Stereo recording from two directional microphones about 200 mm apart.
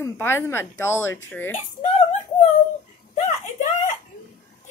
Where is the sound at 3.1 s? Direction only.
35° left (ahead or behind).